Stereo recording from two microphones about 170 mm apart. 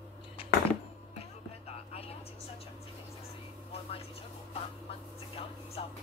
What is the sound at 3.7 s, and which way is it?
Vehicle, 35° left (ahead or behind).